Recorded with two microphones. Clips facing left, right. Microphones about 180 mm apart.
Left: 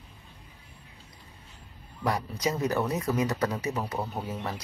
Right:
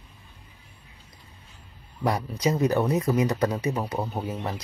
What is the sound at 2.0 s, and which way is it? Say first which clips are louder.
Speech: right 3 dB; 20° right (ahead or behind).